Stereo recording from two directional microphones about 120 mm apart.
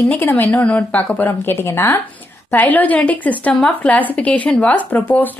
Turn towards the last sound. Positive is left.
turn(degrees=15)  # may be behind; listen again after turning